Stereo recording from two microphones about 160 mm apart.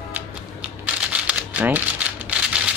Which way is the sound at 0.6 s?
10° right (ahead or behind).